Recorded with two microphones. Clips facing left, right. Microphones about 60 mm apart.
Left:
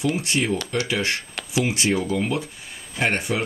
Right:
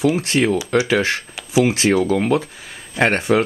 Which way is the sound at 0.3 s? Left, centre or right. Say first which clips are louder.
Right 6 dB; right.